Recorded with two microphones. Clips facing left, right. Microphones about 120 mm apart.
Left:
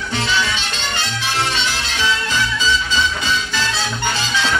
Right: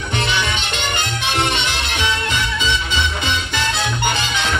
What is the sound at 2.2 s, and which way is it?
Music, 60° right (ahead or behind).